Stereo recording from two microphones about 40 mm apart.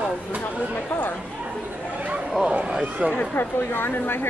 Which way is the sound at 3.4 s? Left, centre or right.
Left.